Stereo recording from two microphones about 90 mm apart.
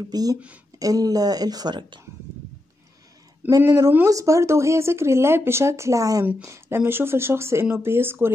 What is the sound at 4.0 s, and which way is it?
Speech, 35° right (ahead or behind).